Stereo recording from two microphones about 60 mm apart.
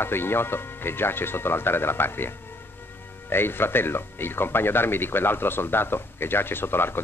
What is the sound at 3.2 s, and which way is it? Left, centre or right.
Speech, left.